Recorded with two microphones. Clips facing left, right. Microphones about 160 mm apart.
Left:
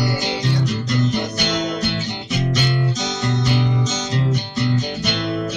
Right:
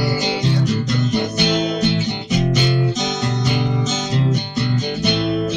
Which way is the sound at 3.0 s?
20° right (ahead or behind).